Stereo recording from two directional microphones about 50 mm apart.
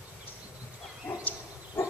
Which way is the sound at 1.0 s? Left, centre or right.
Left.